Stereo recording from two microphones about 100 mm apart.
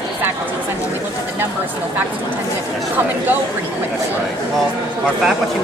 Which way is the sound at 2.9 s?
20° right (ahead or behind).